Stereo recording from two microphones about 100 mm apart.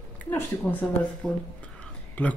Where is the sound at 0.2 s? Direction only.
20° left (ahead or behind).